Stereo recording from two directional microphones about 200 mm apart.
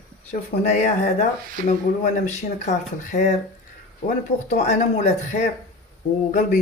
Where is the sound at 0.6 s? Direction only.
35° left (ahead or behind).